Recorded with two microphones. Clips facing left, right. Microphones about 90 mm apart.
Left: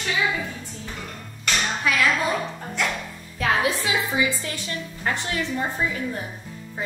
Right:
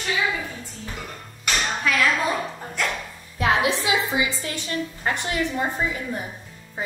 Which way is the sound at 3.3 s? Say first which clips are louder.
Right 1 dB; 20° right (ahead or behind).